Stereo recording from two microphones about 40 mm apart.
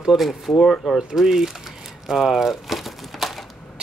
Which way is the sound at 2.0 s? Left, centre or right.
Centre.